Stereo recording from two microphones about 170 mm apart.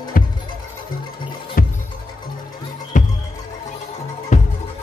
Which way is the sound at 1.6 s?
55° left (ahead or behind).